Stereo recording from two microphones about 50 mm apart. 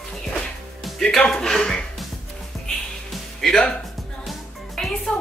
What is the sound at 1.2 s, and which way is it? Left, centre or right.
Speech, centre.